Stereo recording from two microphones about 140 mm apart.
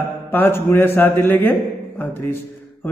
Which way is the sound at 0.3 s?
15° left (ahead or behind).